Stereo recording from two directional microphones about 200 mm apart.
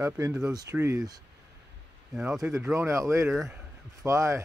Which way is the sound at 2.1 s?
5° right (ahead or behind).